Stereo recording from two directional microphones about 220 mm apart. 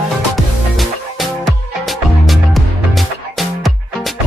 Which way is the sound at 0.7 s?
Centre (ahead or behind).